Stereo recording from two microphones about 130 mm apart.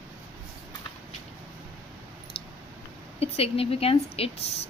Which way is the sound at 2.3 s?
40° left (ahead or behind).